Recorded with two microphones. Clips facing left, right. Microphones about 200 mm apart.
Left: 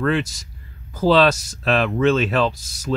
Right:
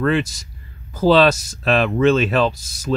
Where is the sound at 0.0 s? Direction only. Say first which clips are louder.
Right 2 dB; 5° right (ahead or behind).